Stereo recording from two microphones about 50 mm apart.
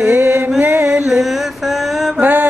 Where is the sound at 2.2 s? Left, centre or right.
Right.